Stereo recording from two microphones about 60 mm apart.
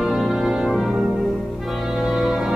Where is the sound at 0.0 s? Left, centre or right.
Centre.